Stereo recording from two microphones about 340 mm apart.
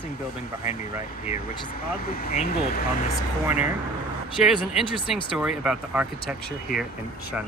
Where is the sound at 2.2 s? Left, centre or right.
Left.